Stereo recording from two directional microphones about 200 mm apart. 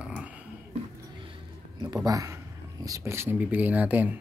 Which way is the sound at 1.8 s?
20° right (ahead or behind).